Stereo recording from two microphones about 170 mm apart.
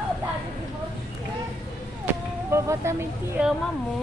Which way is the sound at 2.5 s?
15° right (ahead or behind).